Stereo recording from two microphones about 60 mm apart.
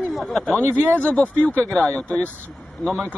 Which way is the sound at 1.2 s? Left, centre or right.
Left.